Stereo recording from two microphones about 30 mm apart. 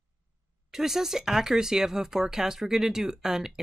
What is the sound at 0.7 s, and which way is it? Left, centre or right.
Speech, centre.